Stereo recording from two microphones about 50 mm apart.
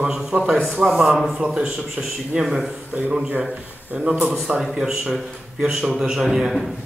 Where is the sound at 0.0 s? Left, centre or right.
Centre.